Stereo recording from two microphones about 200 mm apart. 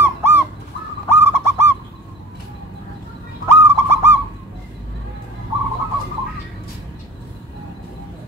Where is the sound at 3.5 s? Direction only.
10° right (ahead or behind).